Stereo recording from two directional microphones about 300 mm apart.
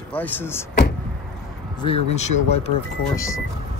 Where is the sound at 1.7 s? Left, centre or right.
Centre.